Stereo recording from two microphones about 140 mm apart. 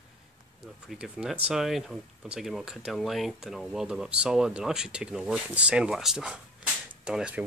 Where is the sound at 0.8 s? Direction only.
5° right (ahead or behind).